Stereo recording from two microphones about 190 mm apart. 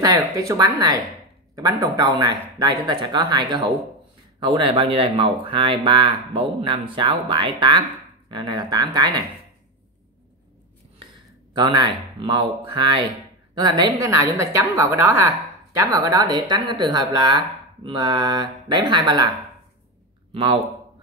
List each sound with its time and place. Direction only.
0.0 s speech: 20° right (ahead or behind)
11.5 s speech: 25° right (ahead or behind)